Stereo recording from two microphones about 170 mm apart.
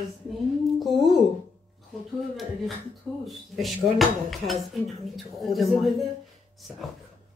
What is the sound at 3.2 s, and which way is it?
Speech, centre (ahead or behind).